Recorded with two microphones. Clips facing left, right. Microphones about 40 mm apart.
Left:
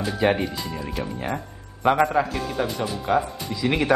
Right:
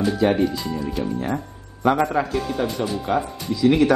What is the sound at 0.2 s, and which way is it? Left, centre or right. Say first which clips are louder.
Speech: left 1 dB; left.